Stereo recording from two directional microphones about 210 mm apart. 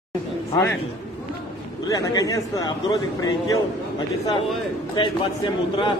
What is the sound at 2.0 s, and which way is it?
A man's voice, 15° left (ahead or behind).